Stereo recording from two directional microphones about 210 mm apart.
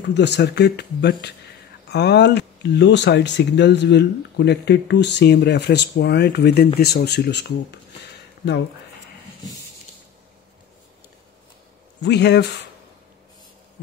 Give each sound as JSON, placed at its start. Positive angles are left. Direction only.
{"t": 0.1, "sound": "speech", "side_deg": 55}
{"t": 12.0, "sound": "speech", "side_deg": 55}